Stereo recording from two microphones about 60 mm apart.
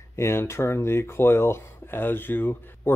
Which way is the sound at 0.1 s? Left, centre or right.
Left.